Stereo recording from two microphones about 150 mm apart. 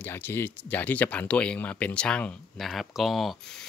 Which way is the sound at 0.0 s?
15° left (ahead or behind).